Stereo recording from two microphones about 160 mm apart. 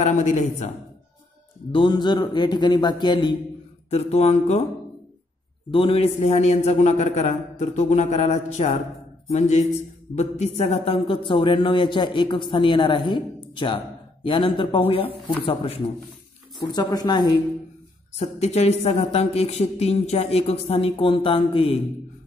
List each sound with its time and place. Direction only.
0.0 s a man's voice: 45° left (ahead or behind)
1.7 s speech: 30° left (ahead or behind)
3.9 s speech: 40° left (ahead or behind)
5.7 s a man's voice: 35° left (ahead or behind)
18.1 s speech: 40° left (ahead or behind)